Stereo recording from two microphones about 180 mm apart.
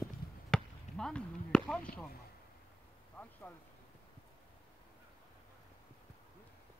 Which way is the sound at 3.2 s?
10° left (ahead or behind).